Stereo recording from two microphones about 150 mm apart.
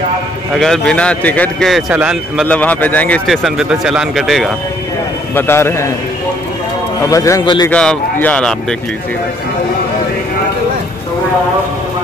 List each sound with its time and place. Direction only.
0.6 s a man's voice: 5° left (ahead or behind)
2.4 s a man's voice: 10° left (ahead or behind)
3.3 s a man's voice: centre (ahead or behind)
5.3 s a man's voice: 15° left (ahead or behind)
7.0 s a man's voice: 20° left (ahead or behind)
7.7 s a man's voice: 5° left (ahead or behind)